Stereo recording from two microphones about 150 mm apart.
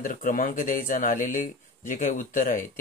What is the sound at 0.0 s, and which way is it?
Speech, 65° left (ahead or behind).